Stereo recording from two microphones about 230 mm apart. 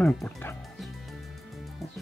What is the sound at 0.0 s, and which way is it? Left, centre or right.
Music, centre.